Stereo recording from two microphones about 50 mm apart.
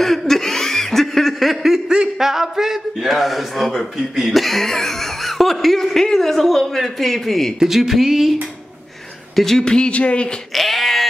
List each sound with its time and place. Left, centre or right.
0.0 s laughter: centre
2.0 s a man's voice: centre
7.5 s a man's voice: centre
9.3 s speech: centre
9.7 s speech: left
10.5 s a sound: centre